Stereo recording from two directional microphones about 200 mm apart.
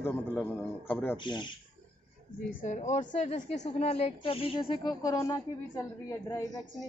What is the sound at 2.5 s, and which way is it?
A woman's voice, 35° left (ahead or behind).